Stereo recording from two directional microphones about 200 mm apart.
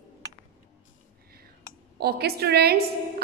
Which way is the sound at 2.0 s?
50° right (ahead or behind).